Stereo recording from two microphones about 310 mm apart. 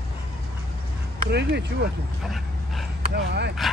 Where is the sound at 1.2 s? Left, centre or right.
Right.